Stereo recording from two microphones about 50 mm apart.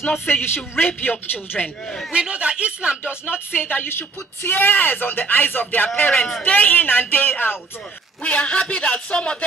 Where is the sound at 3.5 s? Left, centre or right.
Left.